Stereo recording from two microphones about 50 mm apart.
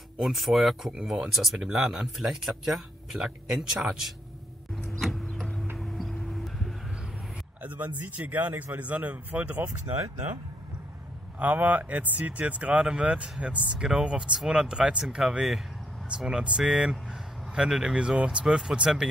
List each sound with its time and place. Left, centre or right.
0.2 s speech: centre
5.8 s music: centre
7.6 s speech: right
11.3 s speech: right; by 19.0 s centre